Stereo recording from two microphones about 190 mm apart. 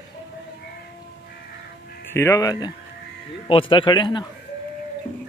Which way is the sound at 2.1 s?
15° left (ahead or behind).